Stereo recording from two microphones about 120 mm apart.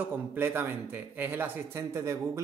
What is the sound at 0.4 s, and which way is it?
A man's voice, 15° right (ahead or behind).